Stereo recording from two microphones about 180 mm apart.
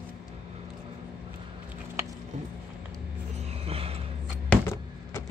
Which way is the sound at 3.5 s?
35° right (ahead or behind).